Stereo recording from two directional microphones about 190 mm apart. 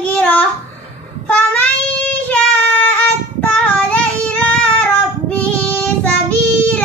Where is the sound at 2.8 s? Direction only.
10° left (ahead or behind).